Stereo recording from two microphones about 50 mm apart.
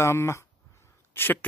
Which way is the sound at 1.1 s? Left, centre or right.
Left.